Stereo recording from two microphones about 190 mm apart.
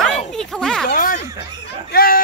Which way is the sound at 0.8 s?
45° left (ahead or behind).